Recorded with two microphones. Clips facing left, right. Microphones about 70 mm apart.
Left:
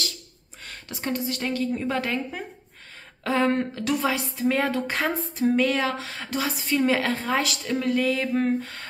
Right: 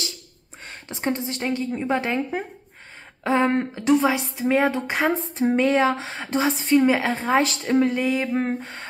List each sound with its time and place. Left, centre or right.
0.7 s a woman's voice: right